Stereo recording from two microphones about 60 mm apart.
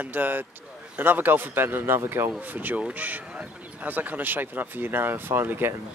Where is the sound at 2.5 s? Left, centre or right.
Right.